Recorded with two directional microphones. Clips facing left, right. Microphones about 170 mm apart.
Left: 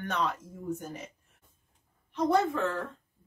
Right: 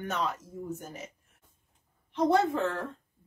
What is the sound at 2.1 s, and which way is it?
Speech, 25° right (ahead or behind).